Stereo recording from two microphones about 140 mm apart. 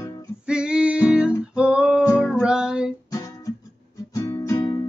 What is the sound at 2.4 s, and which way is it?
Music, 5° right (ahead or behind).